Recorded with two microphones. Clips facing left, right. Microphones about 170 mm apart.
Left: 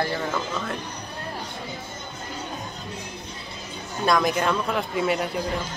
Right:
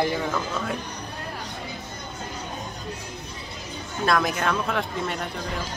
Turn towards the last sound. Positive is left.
turn(degrees=5)  # may be behind; listen again after turning